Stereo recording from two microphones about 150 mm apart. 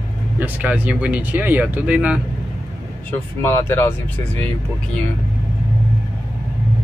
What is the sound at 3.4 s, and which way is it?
Speech, 15° left (ahead or behind).